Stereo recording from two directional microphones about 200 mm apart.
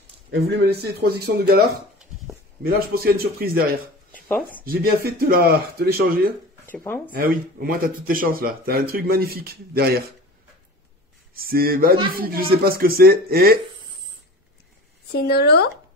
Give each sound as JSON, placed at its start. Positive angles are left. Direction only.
{"t": 0.3, "sound": "speech", "side_deg": -50}
{"t": 2.7, "sound": "speech", "side_deg": -50}
{"t": 4.1, "sound": "a sound", "side_deg": 10}
{"t": 4.6, "sound": "speech", "side_deg": -50}
{"t": 6.6, "sound": "speech", "side_deg": 10}
{"t": 7.2, "sound": "speech", "side_deg": -45}
{"t": 11.3, "sound": "speech", "side_deg": -50}
{"t": 15.1, "sound": "speech", "side_deg": 50}